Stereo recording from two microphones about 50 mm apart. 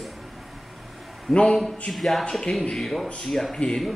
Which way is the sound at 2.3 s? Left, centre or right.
Centre.